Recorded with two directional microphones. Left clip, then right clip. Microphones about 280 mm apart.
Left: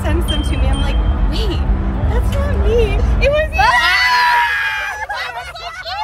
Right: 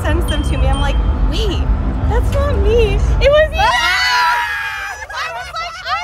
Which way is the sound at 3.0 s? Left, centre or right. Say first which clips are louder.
Right 4 dB; centre.